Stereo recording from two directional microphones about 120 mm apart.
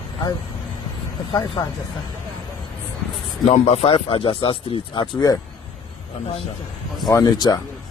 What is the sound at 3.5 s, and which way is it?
Speech, 65° left (ahead or behind).